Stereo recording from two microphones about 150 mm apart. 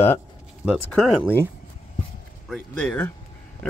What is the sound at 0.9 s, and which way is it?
Speech, 10° left (ahead or behind).